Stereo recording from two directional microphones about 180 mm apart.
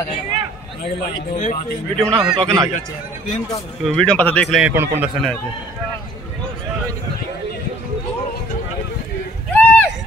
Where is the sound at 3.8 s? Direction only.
5° left (ahead or behind).